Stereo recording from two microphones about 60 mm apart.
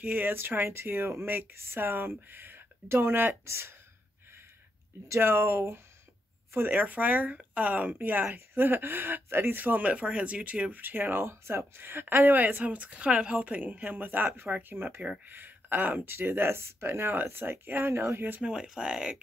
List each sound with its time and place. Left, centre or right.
0.0 s a woman's voice: right
5.0 s speech: right
6.7 s speech: right
10.8 s a woman's voice: right
18.4 s speech: centre